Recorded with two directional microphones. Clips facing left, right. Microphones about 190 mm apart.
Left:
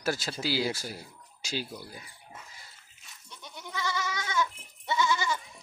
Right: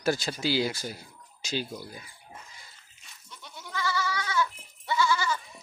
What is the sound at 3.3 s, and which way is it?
Goat, 20° left (ahead or behind).